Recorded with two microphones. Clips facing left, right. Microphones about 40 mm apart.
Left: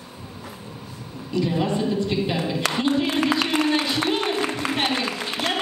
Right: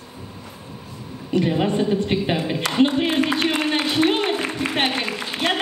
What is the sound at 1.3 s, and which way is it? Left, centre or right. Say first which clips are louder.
A woman's voice: right 3 dB; right.